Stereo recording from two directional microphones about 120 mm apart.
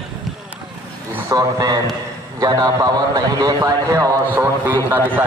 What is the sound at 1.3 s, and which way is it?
A man's voice, 30° right (ahead or behind).